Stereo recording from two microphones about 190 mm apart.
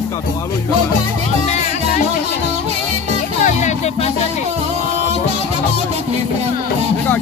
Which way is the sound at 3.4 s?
35° left (ahead or behind).